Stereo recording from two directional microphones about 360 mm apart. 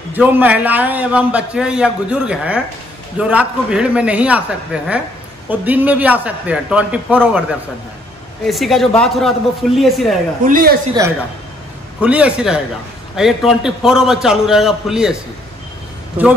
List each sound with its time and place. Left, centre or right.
0.1 s a man's voice: centre
8.5 s a man's voice: centre
10.4 s a woman's voice: right
12.0 s a man's voice: centre
16.2 s a man's voice: centre